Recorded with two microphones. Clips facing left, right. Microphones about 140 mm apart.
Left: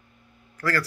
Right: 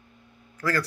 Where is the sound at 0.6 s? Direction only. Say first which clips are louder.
Even; 15° right (ahead or behind).